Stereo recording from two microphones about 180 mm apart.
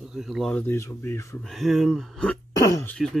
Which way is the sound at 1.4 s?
Centre (ahead or behind).